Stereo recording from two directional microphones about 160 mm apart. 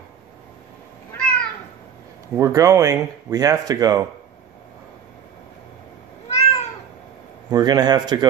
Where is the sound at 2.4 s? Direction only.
20° right (ahead or behind).